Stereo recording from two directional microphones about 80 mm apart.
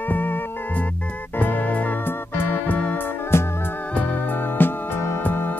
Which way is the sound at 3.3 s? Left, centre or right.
Left.